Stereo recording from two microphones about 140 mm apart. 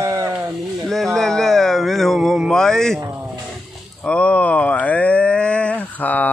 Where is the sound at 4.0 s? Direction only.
10° left (ahead or behind).